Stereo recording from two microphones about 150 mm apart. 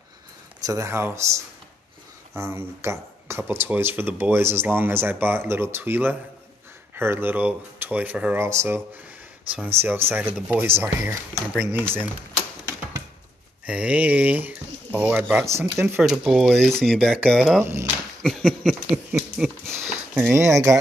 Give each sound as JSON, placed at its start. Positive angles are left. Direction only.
{"t": 0.6, "sound": "speech", "side_deg": -20}
{"t": 13.7, "sound": "speech", "side_deg": -10}
{"t": 16.1, "sound": "speech", "side_deg": -5}
{"t": 17.6, "sound": "speech", "side_deg": -15}
{"t": 18.2, "sound": "speech", "side_deg": 0}
{"t": 20.2, "sound": "speech", "side_deg": -15}